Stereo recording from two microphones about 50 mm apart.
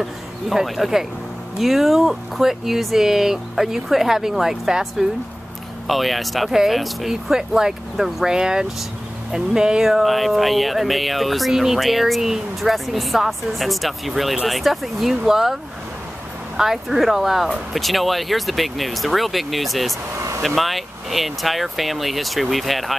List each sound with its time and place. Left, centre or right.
0.0 s speech: centre
9.8 s speech: centre
20.2 s vehicle: right
20.4 s speech: centre